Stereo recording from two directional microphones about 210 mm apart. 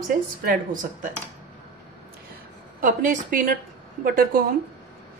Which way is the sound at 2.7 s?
40° right (ahead or behind).